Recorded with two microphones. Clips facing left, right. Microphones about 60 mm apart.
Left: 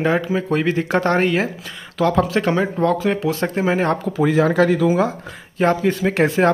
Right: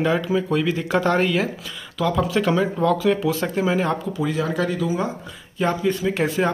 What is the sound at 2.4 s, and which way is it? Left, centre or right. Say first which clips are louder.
Speech: left 1 dB; left.